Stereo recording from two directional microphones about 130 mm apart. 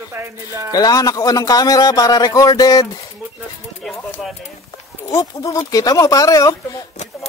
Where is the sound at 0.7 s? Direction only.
30° left (ahead or behind).